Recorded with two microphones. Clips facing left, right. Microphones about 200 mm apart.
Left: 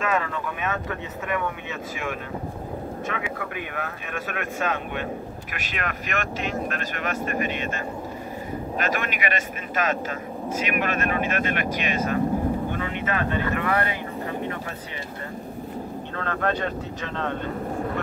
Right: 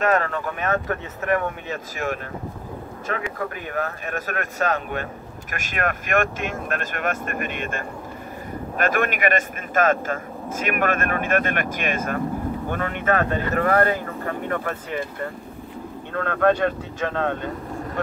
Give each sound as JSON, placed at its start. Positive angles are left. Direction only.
{"t": 0.0, "sound": "speech", "side_deg": -45}
{"t": 16.2, "sound": "speech", "side_deg": -50}